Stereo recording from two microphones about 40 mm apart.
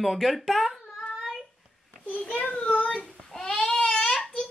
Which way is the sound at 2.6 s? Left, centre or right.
Left.